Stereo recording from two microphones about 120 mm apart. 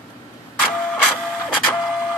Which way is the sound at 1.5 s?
15° left (ahead or behind).